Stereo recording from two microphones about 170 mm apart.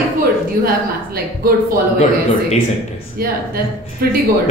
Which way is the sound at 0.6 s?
60° right (ahead or behind).